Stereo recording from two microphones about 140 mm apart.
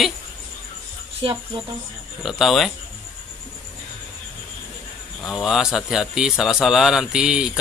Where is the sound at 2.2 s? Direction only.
Centre (ahead or behind).